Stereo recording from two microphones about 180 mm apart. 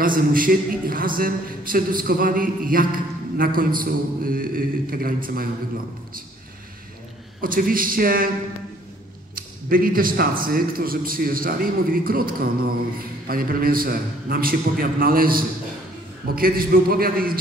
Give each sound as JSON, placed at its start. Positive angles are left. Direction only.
{"t": 0.0, "sound": "a man's voice", "side_deg": -50}
{"t": 7.4, "sound": "a man's voice", "side_deg": -50}
{"t": 9.3, "sound": "a man's voice", "side_deg": -50}